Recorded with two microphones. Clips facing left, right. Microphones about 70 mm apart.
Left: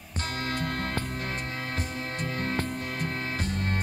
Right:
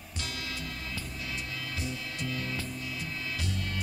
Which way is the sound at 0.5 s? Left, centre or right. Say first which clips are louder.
Left 9 dB; left.